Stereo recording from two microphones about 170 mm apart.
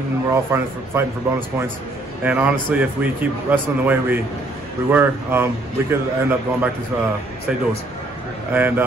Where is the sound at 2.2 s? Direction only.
10° right (ahead or behind).